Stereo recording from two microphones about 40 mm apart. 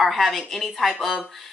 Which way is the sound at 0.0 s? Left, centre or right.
Centre.